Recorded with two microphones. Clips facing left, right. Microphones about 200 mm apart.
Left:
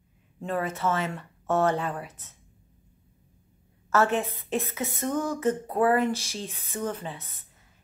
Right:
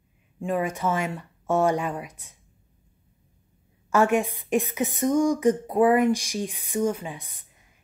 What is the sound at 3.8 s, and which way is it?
A woman's voice, 15° right (ahead or behind).